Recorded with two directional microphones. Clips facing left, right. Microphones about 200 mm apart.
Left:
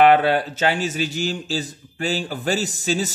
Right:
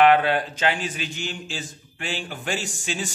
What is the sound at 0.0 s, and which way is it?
Speech, 35° left (ahead or behind).